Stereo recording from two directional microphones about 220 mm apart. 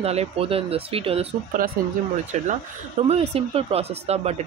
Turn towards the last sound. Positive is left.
turn(degrees=-30)  # may be behind; listen again after turning